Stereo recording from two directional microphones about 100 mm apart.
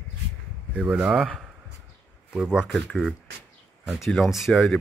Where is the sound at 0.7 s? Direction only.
10° right (ahead or behind).